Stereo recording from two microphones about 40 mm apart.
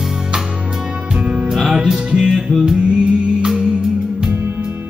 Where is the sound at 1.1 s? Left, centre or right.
Right.